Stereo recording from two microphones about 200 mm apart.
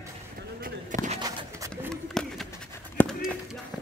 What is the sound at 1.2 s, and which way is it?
Pigeon, 15° right (ahead or behind).